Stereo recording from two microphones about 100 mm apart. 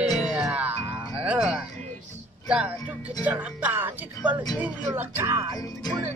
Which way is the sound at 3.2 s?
15° right (ahead or behind).